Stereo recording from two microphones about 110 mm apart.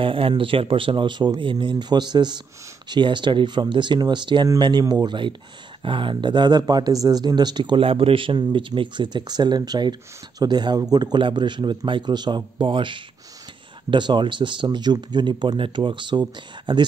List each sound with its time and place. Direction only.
0.0 s speech: 50° right (ahead or behind)